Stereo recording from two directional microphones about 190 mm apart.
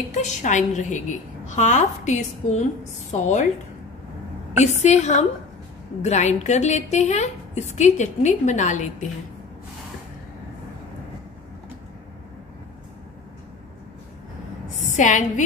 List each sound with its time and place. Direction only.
0.1 s a woman's voice: 40° left (ahead or behind)
4.6 s a woman's voice: 35° left (ahead or behind)
15.0 s a woman's voice: 40° left (ahead or behind)